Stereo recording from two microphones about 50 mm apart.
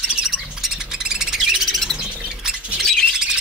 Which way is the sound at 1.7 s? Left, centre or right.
Centre.